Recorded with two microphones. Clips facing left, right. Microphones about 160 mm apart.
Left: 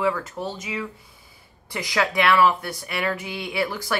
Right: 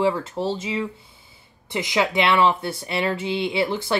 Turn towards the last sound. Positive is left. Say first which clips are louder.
# right 3 dB
turn(degrees=-25)  # may be behind; listen again after turning